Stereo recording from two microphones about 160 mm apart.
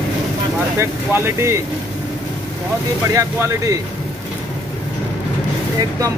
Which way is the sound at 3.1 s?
20° right (ahead or behind).